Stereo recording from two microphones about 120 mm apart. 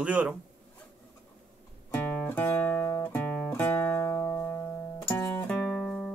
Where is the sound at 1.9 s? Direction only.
15° left (ahead or behind).